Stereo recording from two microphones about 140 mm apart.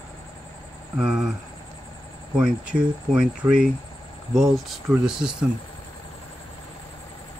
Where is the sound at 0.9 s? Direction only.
5° right (ahead or behind).